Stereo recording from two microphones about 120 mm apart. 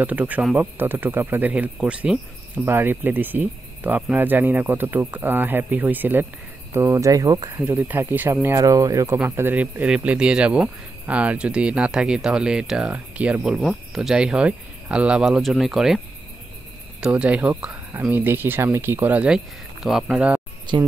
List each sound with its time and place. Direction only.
0.0 s speech: 10° right (ahead or behind); by 7.6 s 30° right (ahead or behind)
7.6 s speech: 15° right (ahead or behind)
9.2 s speech: 15° right (ahead or behind)
17.0 s speech: 10° right (ahead or behind)
20.7 s speech: 40° right (ahead or behind)